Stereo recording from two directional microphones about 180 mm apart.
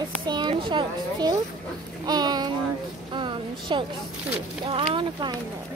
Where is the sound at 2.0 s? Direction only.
20° right (ahead or behind).